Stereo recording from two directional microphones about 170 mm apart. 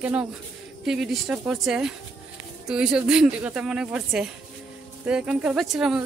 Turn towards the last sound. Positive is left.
turn(degrees=0)  # may be behind; listen again after turning